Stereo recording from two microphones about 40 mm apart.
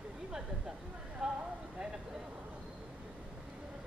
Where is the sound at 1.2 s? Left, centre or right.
Right.